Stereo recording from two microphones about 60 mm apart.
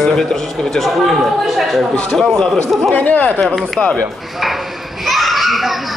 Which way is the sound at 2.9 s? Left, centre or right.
Left.